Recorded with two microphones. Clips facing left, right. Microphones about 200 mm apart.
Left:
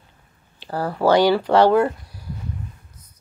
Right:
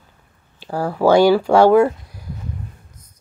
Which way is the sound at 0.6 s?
10° right (ahead or behind).